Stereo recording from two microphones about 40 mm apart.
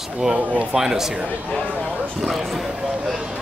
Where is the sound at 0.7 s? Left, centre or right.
Centre.